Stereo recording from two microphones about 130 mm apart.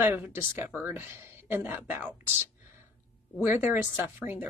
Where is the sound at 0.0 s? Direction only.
15° right (ahead or behind).